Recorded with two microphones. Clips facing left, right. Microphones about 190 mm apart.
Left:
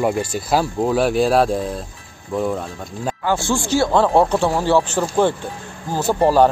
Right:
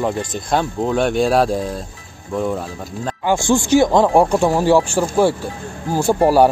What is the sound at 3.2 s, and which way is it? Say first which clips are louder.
Speech: right 5 dB; 15° right (ahead or behind).